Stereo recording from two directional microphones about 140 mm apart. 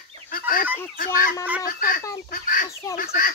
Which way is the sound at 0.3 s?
90° left.